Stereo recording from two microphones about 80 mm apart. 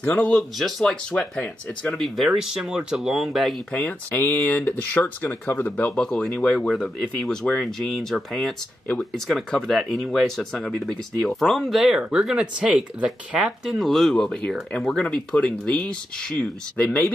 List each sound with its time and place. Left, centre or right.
0.2 s speech: centre
3.7 s speech: left
5.9 s speech: centre